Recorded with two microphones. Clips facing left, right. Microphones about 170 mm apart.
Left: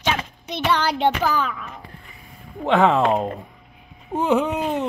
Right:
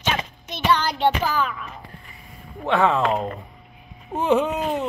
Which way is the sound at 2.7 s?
15° left (ahead or behind).